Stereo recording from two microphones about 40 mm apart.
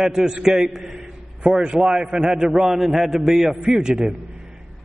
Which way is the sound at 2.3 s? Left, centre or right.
Centre.